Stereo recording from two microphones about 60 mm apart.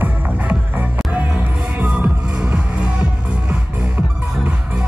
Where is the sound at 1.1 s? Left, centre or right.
Right.